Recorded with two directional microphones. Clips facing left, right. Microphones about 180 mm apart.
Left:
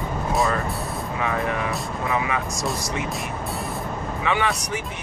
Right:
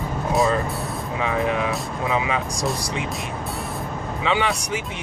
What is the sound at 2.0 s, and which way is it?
Speech, 20° right (ahead or behind).